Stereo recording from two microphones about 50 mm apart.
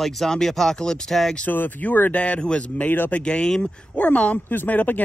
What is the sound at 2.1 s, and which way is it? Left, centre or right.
Speech, left.